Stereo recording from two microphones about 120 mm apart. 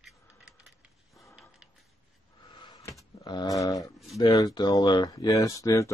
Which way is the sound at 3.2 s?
35° left (ahead or behind).